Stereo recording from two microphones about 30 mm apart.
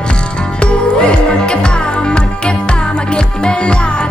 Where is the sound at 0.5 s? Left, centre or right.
Left.